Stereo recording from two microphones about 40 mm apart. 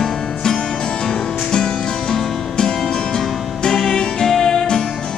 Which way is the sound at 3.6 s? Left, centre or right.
Centre.